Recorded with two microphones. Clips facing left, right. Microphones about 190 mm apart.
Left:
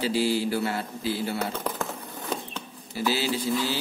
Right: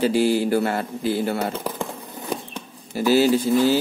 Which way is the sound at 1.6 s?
10° right (ahead or behind).